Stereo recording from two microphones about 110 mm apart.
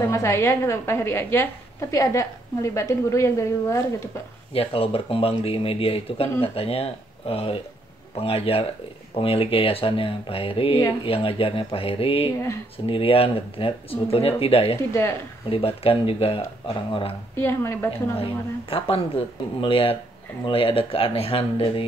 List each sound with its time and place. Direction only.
0.0 s a woman's voice: 25° left (ahead or behind)
4.6 s speech: 55° left (ahead or behind)
14.8 s a woman's voice: 25° left (ahead or behind)
15.5 s speech: 60° left (ahead or behind)
17.4 s a woman's voice: 20° left (ahead or behind)
18.1 s speech: 55° left (ahead or behind)